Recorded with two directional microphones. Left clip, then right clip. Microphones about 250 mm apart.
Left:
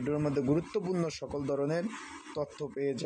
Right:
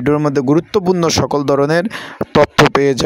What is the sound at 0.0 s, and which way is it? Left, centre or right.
Speech, right.